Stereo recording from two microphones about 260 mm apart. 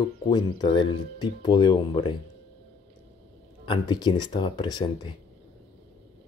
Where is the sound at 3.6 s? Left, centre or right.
Centre.